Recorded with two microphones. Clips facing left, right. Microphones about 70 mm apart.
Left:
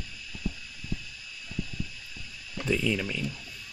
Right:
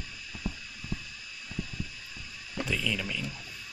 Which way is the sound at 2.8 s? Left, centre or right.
Left.